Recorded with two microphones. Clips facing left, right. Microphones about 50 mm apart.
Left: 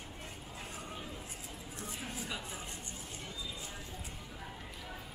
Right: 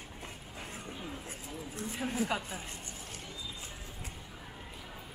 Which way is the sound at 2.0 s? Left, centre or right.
Right.